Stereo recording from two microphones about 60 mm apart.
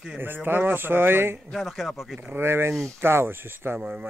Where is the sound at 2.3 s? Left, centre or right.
Right.